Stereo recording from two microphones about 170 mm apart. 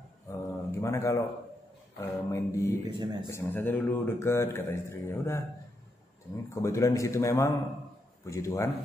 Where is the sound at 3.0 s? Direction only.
25° right (ahead or behind).